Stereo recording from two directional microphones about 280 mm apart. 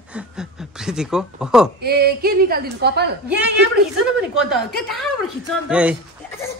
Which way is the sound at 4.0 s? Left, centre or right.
Centre.